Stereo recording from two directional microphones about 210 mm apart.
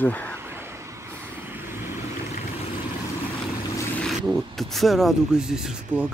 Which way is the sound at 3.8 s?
5° left (ahead or behind).